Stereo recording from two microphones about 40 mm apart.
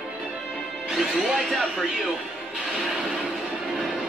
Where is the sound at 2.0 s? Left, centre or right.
Centre.